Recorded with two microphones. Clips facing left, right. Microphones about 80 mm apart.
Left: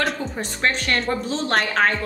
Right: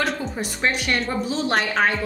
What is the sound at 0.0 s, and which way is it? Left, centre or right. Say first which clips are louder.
A woman's voice: even; centre.